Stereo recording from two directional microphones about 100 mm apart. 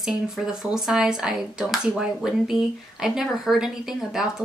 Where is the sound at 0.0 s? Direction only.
5° right (ahead or behind).